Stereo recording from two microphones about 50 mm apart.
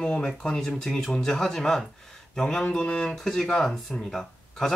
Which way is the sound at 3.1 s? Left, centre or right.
Centre.